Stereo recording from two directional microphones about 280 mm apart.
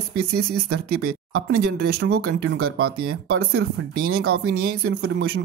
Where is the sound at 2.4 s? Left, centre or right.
Right.